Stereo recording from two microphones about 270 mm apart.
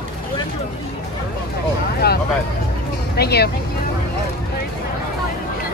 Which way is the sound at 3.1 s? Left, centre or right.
Left.